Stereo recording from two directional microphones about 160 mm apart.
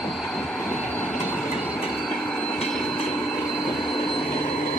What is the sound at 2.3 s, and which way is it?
Train, 5° left (ahead or behind).